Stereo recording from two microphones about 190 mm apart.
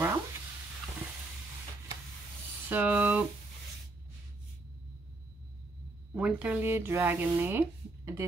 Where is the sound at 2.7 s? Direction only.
10° right (ahead or behind).